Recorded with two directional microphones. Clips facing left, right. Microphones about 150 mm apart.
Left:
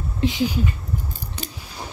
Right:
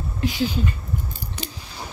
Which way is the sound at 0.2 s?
20° left (ahead or behind).